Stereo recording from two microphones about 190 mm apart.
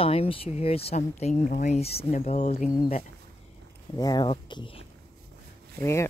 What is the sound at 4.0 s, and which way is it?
Speech, 20° left (ahead or behind).